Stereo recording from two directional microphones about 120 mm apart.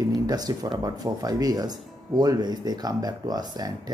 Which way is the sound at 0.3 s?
35° right (ahead or behind).